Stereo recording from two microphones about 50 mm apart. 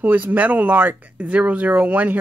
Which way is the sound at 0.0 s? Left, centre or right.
Right.